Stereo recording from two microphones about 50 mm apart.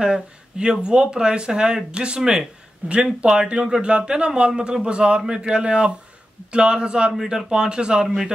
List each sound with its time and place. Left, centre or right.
0.0 s speech: centre
2.8 s speech: right
3.3 s a man's voice: centre